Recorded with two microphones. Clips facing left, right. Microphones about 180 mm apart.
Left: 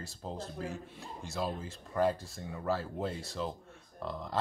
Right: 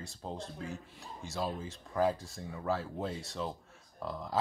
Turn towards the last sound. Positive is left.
turn(degrees=0)  # may be behind; listen again after turning